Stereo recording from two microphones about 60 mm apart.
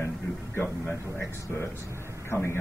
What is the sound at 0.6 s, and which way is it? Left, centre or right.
A man's voice, left.